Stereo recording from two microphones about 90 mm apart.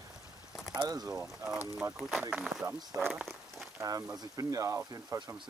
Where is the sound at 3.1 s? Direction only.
5° right (ahead or behind).